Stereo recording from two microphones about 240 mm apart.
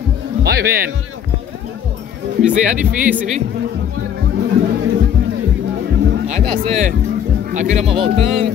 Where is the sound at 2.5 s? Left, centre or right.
Right.